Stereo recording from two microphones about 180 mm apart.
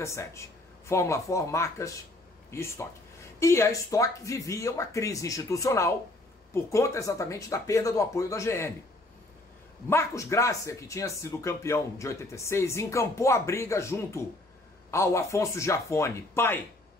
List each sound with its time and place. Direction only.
0.0 s speech: 15° left (ahead or behind)
9.8 s speech: 15° left (ahead or behind)